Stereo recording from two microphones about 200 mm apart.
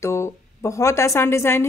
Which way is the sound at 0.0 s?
15° left (ahead or behind).